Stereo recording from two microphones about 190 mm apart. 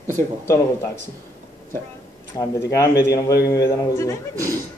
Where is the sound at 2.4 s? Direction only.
15° left (ahead or behind).